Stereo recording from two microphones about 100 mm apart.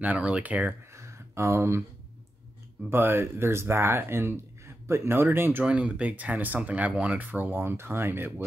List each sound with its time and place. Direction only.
0.0 s speech: 15° right (ahead or behind)
0.9 s a sound: 30° right (ahead or behind)
2.9 s speech: 25° right (ahead or behind)